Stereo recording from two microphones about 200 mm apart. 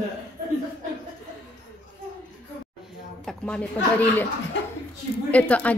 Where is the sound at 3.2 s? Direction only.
5° left (ahead or behind).